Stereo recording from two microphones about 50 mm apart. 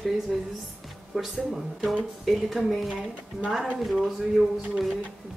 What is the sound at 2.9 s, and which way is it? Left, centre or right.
Speech, centre.